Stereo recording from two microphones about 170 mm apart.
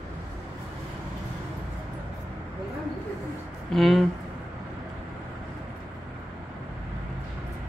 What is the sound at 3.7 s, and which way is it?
Speech, centre (ahead or behind).